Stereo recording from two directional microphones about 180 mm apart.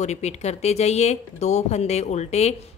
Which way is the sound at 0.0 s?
40° left (ahead or behind).